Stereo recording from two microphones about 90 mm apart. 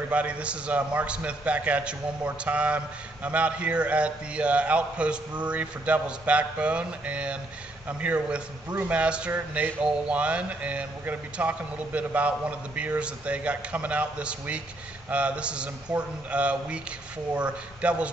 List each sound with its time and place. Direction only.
0.1 s speech: 15° right (ahead or behind)